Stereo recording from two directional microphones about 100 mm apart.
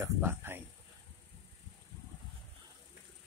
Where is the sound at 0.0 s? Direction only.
25° right (ahead or behind).